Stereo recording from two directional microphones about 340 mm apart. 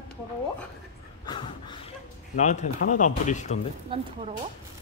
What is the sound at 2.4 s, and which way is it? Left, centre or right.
Speech, left.